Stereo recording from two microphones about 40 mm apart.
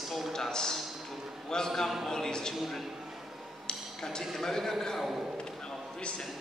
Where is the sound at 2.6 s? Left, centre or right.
Centre.